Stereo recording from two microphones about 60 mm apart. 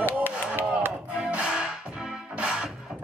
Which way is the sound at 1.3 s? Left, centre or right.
Centre.